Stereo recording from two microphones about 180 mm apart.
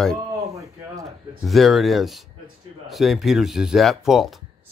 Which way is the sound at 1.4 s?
Centre (ahead or behind).